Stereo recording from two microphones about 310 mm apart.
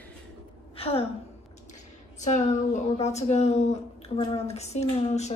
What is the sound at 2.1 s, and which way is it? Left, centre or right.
Speech, left.